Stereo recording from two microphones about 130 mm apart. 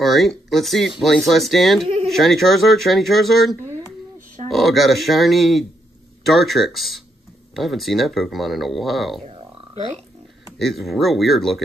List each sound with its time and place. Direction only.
0.0 s speech: centre (ahead or behind)
9.2 s a sound: 45° right (ahead or behind)
10.6 s speech: centre (ahead or behind)